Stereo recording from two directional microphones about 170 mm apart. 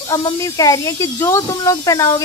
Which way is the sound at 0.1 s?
20° left (ahead or behind).